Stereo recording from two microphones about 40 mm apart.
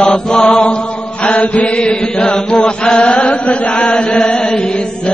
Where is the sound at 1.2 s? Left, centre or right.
Left.